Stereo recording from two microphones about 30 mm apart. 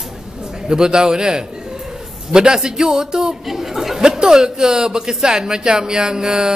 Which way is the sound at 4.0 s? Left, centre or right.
Right.